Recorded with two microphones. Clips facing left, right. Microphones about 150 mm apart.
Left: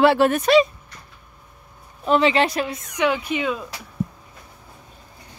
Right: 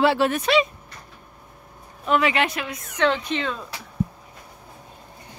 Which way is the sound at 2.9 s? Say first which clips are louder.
Even; 10° left (ahead or behind).